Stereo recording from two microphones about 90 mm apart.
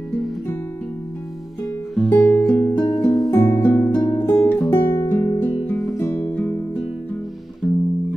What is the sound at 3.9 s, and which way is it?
Music, 45° left (ahead or behind).